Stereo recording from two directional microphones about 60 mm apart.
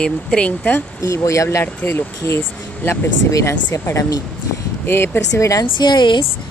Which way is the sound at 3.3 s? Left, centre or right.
Left.